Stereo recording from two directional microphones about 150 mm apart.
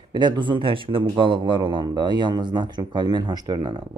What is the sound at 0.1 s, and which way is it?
A man's voice, 30° right (ahead or behind).